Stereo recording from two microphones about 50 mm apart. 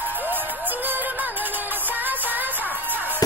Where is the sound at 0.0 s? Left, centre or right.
Right.